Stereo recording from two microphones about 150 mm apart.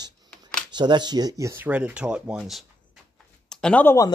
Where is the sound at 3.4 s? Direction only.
5° left (ahead or behind).